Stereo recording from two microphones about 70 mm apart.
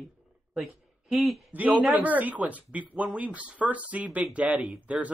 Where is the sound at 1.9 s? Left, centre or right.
Right.